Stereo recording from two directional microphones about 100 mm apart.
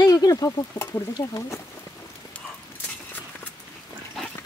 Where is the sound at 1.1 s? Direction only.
35° left (ahead or behind).